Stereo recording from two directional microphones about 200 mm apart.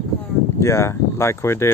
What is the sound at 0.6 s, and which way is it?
Speech, 15° left (ahead or behind).